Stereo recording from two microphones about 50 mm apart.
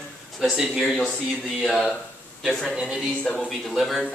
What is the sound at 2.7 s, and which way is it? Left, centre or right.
Speech, centre.